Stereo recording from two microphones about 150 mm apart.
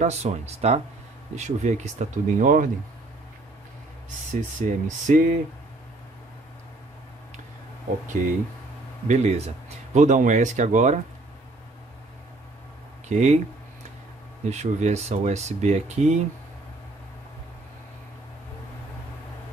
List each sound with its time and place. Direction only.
0.0 s speech: 45° right (ahead or behind); by 2.7 s 65° right (ahead or behind)
4.3 s speech: 55° right (ahead or behind)
9.0 s speech: 55° right (ahead or behind)
13.1 s speech: 50° right (ahead or behind)
14.4 s speech: 50° right (ahead or behind)